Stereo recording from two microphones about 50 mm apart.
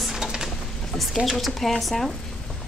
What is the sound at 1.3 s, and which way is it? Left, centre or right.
Speech, centre.